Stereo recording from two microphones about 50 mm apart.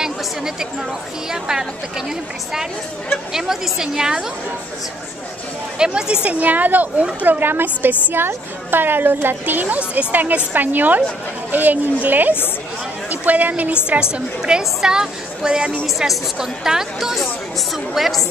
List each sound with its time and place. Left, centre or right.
0.0 s chatter: centre
1.3 s speech: centre
3.3 s speech: centre
5.8 s speech: centre
6.3 s a woman's voice: right
14.4 s a woman's voice: centre